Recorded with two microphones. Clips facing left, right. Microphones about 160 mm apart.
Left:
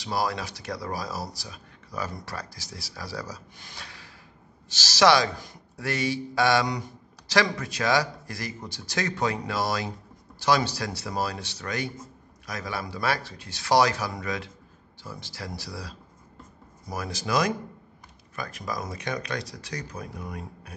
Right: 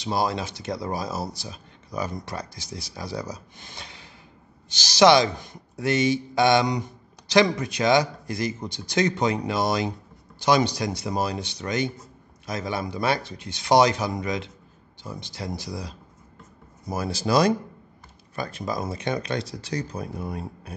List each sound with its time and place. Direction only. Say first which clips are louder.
0.0 s speech: right 3 dB; 20° right (ahead or behind)
16.9 s speech: right 5 dB; 30° right (ahead or behind)